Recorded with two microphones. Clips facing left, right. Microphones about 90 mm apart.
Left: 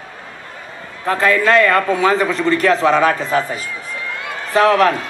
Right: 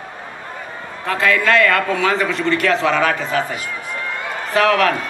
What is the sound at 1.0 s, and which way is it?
A man's voice, 35° left (ahead or behind).